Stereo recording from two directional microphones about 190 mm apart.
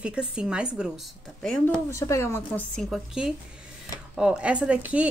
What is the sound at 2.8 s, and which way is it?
Speech, 5° right (ahead or behind).